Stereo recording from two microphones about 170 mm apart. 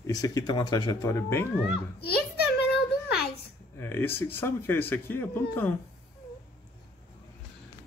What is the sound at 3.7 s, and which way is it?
Speech, 15° left (ahead or behind).